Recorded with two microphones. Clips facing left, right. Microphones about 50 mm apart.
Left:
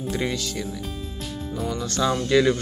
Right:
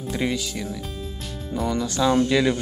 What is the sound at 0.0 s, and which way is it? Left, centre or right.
Speech, centre.